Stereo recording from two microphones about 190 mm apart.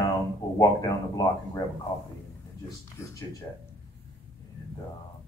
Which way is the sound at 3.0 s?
15° left (ahead or behind).